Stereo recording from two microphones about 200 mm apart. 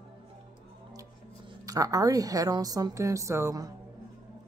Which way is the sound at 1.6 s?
15° right (ahead or behind).